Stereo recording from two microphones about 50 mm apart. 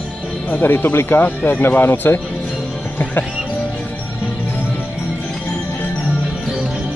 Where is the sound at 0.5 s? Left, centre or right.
Left.